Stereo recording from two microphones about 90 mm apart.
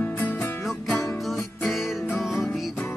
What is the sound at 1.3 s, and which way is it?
Music, centre (ahead or behind).